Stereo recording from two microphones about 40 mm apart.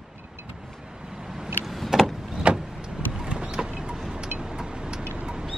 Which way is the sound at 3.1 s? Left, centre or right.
Centre.